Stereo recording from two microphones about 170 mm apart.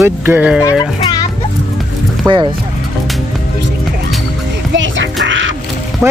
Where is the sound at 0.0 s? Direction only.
10° right (ahead or behind).